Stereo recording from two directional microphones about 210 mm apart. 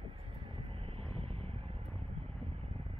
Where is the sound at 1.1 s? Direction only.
25° right (ahead or behind).